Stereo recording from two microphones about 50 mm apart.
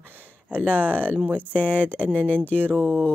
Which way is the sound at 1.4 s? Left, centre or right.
Left.